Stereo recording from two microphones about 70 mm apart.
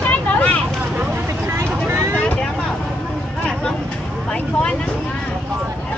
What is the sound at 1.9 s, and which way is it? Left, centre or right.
Vehicle, right.